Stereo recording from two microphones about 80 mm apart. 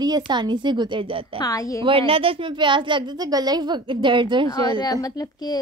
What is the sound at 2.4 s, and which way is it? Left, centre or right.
Speech, right.